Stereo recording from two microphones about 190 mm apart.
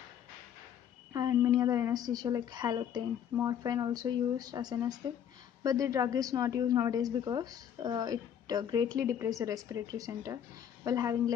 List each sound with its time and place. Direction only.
1.1 s a woman's voice: 20° right (ahead or behind)